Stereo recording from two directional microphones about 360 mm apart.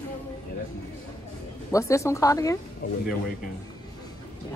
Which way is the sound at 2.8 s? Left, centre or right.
Left.